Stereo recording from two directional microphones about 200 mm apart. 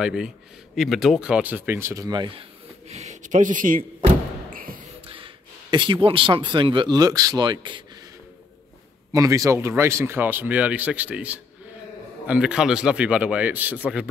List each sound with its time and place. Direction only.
0.0 s a man's voice: 5° right (ahead or behind); by 2.4 s 25° right (ahead or behind)
2.9 s a sound: 35° right (ahead or behind)
5.0 s a man's voice: 25° right (ahead or behind)
9.1 s a man's voice: 15° right (ahead or behind)